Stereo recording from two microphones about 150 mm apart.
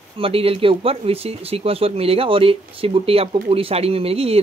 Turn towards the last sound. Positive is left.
turn(degrees=-40)  # may be behind; listen again after turning